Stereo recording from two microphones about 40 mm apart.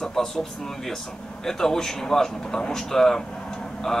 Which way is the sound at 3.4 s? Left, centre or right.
Centre.